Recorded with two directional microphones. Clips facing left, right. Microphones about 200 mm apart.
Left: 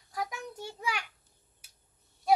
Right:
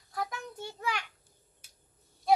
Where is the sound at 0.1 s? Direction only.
10° left (ahead or behind).